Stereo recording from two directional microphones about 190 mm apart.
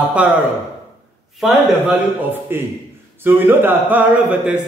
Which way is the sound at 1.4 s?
Centre (ahead or behind).